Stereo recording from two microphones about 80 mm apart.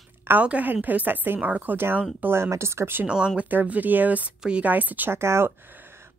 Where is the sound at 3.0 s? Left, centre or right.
Centre.